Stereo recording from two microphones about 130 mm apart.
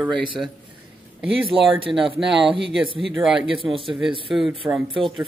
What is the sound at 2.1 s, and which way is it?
Speech, 5° right (ahead or behind).